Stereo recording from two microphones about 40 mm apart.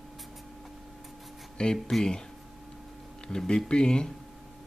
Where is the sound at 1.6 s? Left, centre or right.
Left.